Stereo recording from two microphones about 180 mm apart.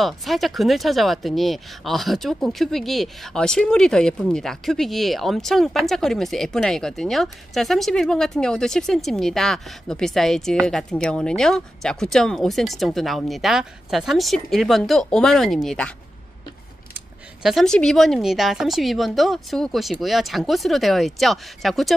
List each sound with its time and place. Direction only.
0.0 s speech: centre (ahead or behind)
17.4 s speech: centre (ahead or behind)